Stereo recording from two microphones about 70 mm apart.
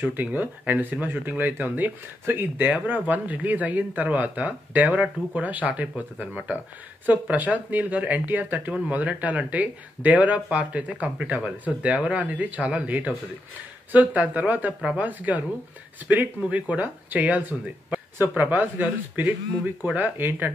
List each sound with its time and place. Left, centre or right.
0.0 s speech: right